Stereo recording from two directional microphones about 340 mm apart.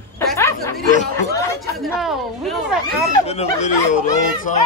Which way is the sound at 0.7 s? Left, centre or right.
Left.